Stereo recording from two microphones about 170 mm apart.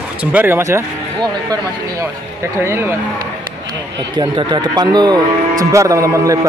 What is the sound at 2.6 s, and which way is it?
Speech, 15° right (ahead or behind).